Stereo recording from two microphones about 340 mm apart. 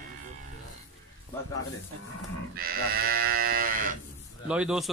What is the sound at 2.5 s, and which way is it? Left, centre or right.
Livestock, right.